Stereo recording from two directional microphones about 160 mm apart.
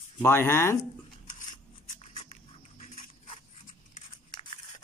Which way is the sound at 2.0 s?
40° left (ahead or behind).